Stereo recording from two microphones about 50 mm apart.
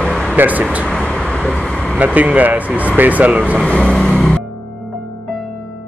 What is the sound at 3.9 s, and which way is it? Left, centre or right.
Music, centre.